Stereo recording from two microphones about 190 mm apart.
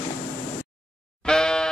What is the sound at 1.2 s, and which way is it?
Bleat, 5° left (ahead or behind).